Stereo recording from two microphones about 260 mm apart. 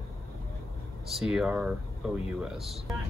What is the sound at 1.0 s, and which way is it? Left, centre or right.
Speech, centre.